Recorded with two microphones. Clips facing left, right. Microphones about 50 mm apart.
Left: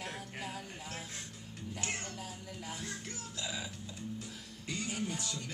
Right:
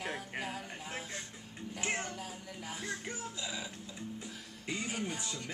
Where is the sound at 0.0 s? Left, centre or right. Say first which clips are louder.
Right 3 dB; centre.